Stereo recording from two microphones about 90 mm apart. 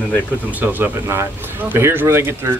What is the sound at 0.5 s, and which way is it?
Speech, 20° right (ahead or behind).